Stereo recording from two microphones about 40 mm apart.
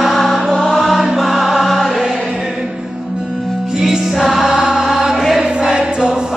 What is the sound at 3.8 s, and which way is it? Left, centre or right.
Music, centre.